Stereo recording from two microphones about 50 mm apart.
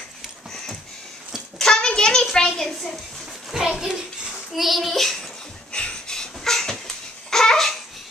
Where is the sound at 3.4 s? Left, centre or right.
Centre.